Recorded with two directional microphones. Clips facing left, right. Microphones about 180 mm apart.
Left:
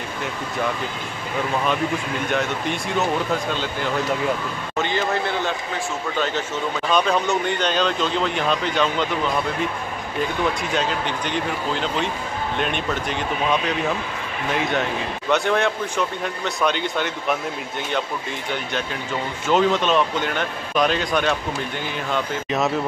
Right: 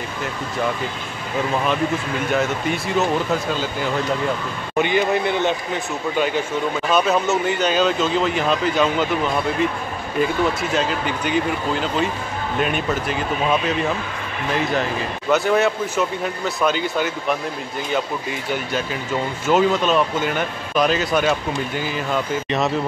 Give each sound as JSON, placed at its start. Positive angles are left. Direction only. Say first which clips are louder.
{"t": 2.3, "sound": "speech", "louder": "right 3 dB", "side_deg": 0}
{"t": 4.7, "sound": "a man's voice", "louder": "right 5 dB", "side_deg": -15}
{"t": 10.6, "sound": "speech", "louder": "right 2 dB", "side_deg": 0}
{"t": 18.5, "sound": "speech", "louder": "right 3 dB", "side_deg": -5}